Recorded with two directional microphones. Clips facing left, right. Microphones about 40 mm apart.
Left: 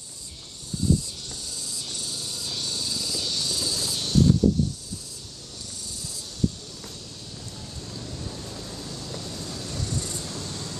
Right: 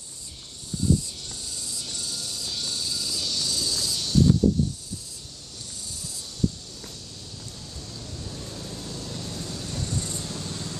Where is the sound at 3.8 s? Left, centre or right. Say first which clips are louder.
Even; left.